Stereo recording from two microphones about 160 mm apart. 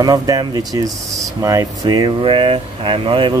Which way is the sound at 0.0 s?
25° right (ahead or behind).